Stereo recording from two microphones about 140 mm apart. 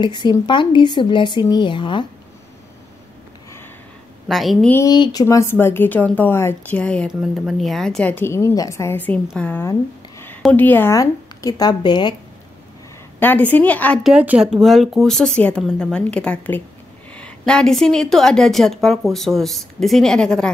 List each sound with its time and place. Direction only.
0.0 s speech: 30° left (ahead or behind)
4.3 s a woman's voice: centre (ahead or behind)
4.8 s a woman's voice: 30° left (ahead or behind); by 7.1 s 10° left (ahead or behind)
7.1 s a woman's voice: 5° right (ahead or behind); by 12.2 s 30° left (ahead or behind)
13.2 s a woman's voice: 10° left (ahead or behind)
14.0 s a woman's voice: 10° right (ahead or behind)